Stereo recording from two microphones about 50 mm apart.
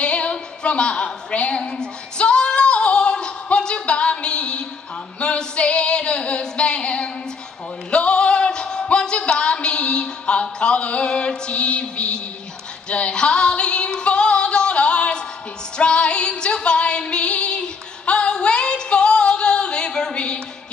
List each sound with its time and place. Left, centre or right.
0.0 s a sound: left
1.6 s female singing: centre
5.2 s singing: left
7.9 s music: left
8.8 s a sound: centre
15.8 s female singing: left